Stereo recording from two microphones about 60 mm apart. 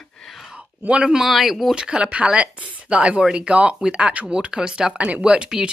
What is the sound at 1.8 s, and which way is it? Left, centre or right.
Speech, centre.